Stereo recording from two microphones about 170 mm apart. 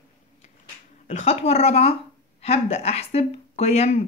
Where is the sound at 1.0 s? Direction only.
45° left (ahead or behind).